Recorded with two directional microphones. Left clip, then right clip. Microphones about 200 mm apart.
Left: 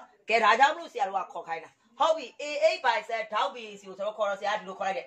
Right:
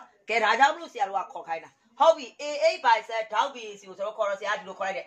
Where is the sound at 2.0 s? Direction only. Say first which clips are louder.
Right 5 dB; 15° right (ahead or behind).